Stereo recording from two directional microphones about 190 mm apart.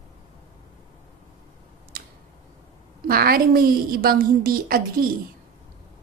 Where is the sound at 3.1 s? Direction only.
50° right (ahead or behind).